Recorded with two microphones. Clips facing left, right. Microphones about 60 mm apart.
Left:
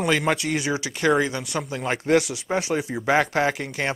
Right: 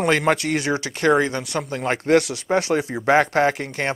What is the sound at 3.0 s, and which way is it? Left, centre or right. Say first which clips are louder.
Speech: right 4 dB; right.